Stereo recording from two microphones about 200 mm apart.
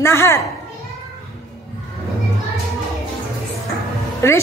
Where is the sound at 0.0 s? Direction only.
15° left (ahead or behind).